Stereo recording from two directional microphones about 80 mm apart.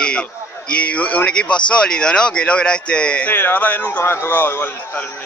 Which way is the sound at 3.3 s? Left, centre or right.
Left.